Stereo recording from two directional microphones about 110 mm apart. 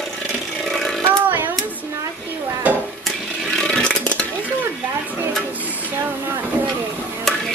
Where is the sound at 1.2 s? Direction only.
15° right (ahead or behind).